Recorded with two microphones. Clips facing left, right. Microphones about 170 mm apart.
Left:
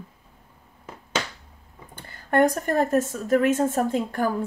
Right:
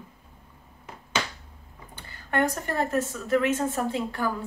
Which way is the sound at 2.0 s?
45° left (ahead or behind).